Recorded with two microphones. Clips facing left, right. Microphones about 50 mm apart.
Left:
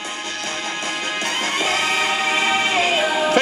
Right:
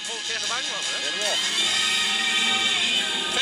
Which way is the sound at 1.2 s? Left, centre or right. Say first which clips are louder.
Left 4 dB; left.